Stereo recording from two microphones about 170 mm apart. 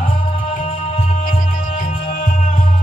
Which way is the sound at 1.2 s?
50° left (ahead or behind).